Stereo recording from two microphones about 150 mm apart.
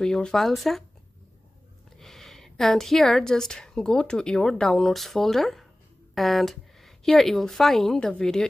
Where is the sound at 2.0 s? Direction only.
Centre (ahead or behind).